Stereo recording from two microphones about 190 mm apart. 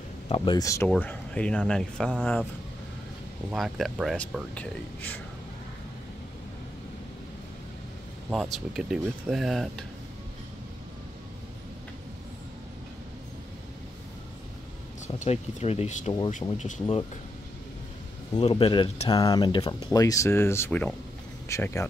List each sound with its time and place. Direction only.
0.6 s speech: 15° left (ahead or behind)
3.4 s speech: centre (ahead or behind)
8.3 s speech: centre (ahead or behind)
15.1 s speech: 35° left (ahead or behind)
18.3 s speech: 30° left (ahead or behind); by 21.8 s 15° left (ahead or behind)